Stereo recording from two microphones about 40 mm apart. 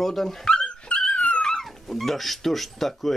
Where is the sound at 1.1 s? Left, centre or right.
Left.